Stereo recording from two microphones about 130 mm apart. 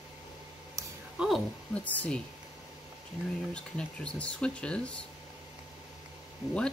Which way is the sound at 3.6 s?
10° left (ahead or behind).